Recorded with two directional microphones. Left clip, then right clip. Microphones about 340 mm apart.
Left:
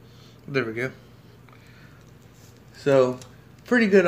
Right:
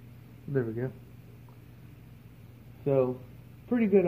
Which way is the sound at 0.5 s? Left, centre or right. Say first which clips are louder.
Left 6 dB; centre.